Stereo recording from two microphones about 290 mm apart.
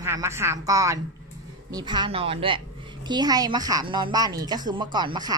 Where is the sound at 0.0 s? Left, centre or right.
Centre.